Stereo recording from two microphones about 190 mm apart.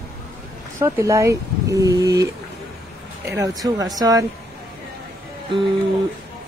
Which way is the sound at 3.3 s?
20° right (ahead or behind).